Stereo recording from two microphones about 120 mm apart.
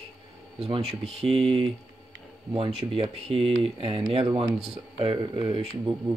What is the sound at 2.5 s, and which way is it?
Speech, 55° right (ahead or behind).